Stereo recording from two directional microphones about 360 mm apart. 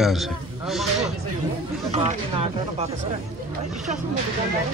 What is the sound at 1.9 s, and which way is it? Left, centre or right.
Speech, centre.